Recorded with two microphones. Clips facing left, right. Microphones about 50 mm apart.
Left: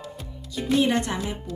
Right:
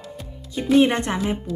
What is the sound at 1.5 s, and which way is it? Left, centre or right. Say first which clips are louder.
Speech: right 6 dB; centre.